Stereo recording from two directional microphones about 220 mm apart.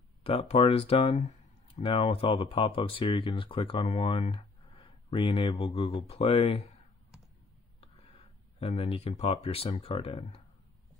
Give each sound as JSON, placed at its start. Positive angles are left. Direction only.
{"t": 0.2, "sound": "speech", "side_deg": 25}
{"t": 8.5, "sound": "speech", "side_deg": 25}